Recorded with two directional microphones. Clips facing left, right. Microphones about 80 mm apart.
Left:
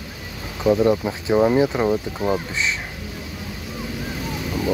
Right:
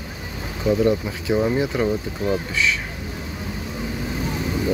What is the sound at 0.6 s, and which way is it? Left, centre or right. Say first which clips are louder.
Speech: left 2 dB; left.